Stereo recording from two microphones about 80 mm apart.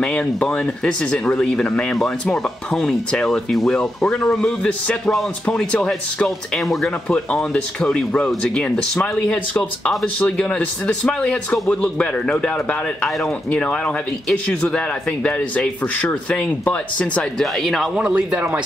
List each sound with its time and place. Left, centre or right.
0.0 s speech: centre
7.1 s speech: centre
17.9 s speech: centre